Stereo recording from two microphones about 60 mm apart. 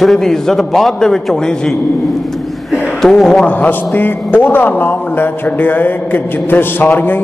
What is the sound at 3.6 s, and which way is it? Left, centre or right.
A man's voice, left.